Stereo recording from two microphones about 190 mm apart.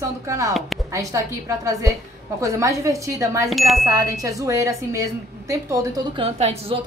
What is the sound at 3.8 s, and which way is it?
A woman's voice, 20° right (ahead or behind).